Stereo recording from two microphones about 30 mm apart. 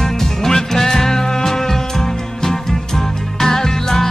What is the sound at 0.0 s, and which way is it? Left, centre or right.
Music, centre.